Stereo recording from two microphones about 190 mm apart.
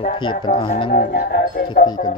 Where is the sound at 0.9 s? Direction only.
50° left (ahead or behind).